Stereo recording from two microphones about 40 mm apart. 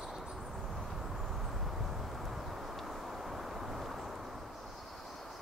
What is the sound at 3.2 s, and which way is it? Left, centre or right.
Vehicle, centre.